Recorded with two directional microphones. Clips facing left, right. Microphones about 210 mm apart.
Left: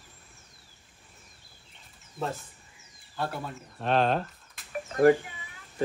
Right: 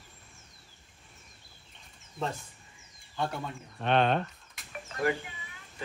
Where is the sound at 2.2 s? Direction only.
Centre (ahead or behind).